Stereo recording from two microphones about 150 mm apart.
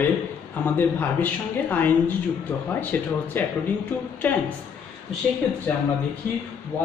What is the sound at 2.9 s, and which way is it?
Speech, 10° left (ahead or behind).